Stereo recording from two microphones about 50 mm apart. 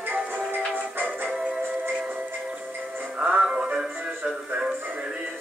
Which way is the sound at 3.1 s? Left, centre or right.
Right.